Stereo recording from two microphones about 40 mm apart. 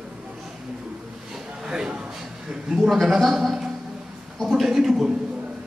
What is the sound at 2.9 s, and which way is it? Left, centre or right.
A man's voice, centre.